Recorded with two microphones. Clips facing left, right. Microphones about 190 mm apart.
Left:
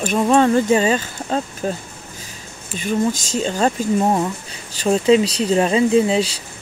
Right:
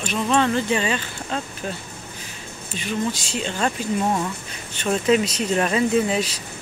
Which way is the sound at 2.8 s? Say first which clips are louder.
Left 6 dB; 40° left (ahead or behind).